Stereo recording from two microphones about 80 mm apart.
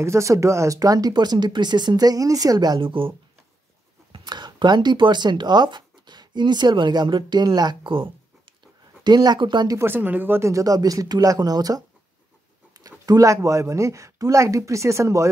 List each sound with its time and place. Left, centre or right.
0.0 s speech: right
2.8 s speech: right
4.1 s speech: right
7.4 s speech: right
7.8 s speech: right
9.0 s speech: right
9.8 s speech: right
10.4 s speech: right